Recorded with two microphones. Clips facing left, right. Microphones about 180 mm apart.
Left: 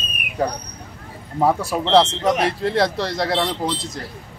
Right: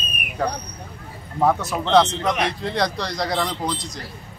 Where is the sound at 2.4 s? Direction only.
5° left (ahead or behind).